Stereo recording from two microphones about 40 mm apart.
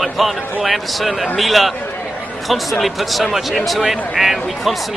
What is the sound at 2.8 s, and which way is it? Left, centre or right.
Speech, centre.